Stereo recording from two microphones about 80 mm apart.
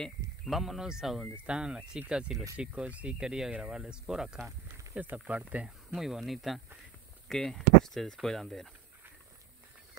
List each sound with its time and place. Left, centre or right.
0.0 s speech: centre
4.5 s a sound: right
4.9 s speech: centre
5.9 s speech: centre